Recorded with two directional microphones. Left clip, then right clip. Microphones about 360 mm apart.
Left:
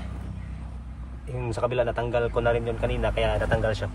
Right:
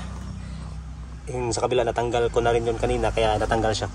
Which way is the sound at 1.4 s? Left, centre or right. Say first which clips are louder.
Right 3 dB; centre.